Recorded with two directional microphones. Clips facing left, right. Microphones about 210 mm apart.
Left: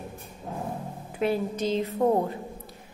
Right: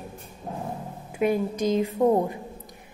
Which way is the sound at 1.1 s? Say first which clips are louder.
Right 3 dB; 15° right (ahead or behind).